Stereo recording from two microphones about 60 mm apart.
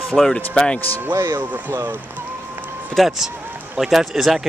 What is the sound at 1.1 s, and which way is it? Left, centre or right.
Speech, right.